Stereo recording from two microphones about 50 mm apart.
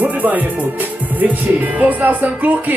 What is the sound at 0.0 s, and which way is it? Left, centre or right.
Music, right.